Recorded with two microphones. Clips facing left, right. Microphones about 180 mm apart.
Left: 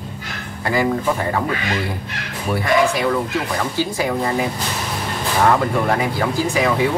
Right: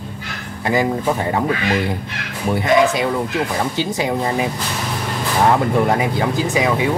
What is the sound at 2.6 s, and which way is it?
Speech, 20° right (ahead or behind).